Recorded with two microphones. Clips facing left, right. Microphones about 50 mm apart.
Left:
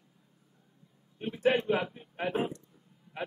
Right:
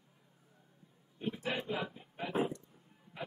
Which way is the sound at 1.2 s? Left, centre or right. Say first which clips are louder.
Left 10 dB; left.